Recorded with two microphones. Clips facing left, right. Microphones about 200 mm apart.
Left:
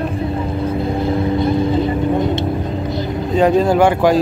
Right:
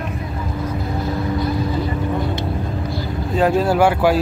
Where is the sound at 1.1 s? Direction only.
25° left (ahead or behind).